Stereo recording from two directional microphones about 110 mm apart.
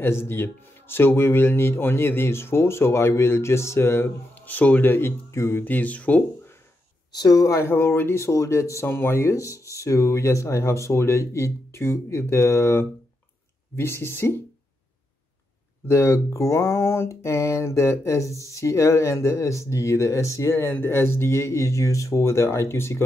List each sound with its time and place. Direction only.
0.0 s speech: 20° left (ahead or behind)
7.2 s speech: 35° left (ahead or behind)
15.9 s speech: 25° left (ahead or behind)